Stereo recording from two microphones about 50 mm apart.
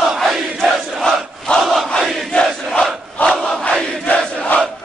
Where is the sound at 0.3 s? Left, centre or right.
Centre.